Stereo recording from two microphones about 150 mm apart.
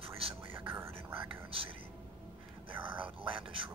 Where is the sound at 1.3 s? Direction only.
35° right (ahead or behind).